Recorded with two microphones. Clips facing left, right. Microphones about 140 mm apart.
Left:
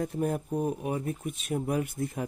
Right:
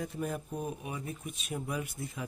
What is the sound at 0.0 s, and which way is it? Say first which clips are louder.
Speech: left 6 dB; 50° left (ahead or behind).